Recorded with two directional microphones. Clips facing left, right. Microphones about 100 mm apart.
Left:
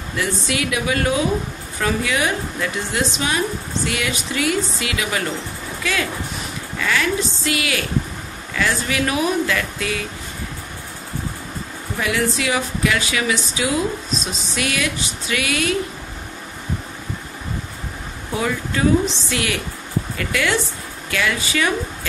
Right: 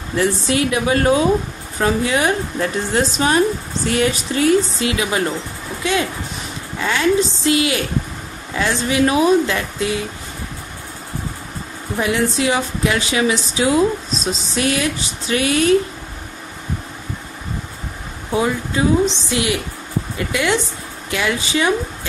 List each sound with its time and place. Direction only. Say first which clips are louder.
0.1 s a woman's voice: right 6 dB; 35° right (ahead or behind)
12.0 s speech: right 3 dB; 25° right (ahead or behind)
18.3 s speech: right 4 dB; 20° right (ahead or behind)